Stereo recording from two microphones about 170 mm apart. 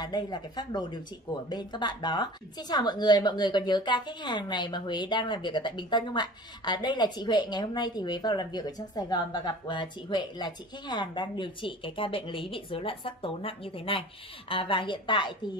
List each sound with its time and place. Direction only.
0.0 s speech: 25° left (ahead or behind)